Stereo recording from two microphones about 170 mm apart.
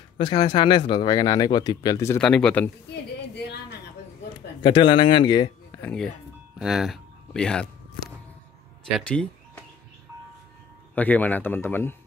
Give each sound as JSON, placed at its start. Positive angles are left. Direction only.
{"t": 0.2, "sound": "speech", "side_deg": 25}
{"t": 2.2, "sound": "speech", "side_deg": 5}
{"t": 4.6, "sound": "speech", "side_deg": 30}
{"t": 5.8, "sound": "speech", "side_deg": 5}
{"t": 8.8, "sound": "a sound", "side_deg": 5}
{"t": 11.0, "sound": "a man's voice", "side_deg": 10}